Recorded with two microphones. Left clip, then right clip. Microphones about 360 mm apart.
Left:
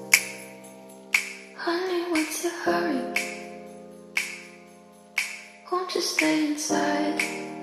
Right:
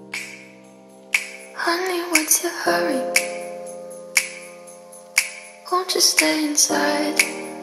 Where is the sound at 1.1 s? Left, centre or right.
Centre.